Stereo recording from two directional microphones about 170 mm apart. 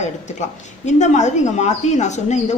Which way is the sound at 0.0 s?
45° left (ahead or behind).